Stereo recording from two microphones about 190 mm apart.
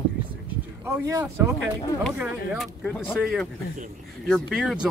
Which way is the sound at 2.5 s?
Centre (ahead or behind).